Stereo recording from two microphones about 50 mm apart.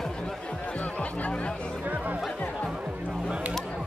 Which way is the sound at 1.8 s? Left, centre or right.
Right.